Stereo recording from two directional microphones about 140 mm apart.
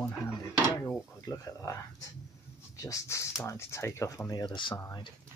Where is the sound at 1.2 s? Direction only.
25° left (ahead or behind).